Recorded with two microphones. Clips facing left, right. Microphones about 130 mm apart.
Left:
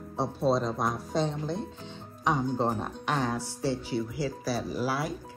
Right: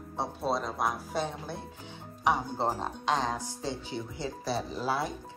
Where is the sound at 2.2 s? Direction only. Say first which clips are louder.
Left 1 dB; 15° right (ahead or behind).